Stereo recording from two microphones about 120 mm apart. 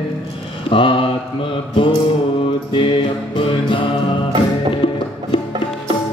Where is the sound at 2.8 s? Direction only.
45° left (ahead or behind).